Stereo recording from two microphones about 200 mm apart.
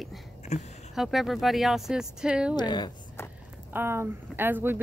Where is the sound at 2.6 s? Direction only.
20° left (ahead or behind).